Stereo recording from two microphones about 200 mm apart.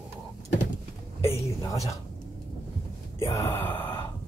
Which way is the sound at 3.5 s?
10° left (ahead or behind).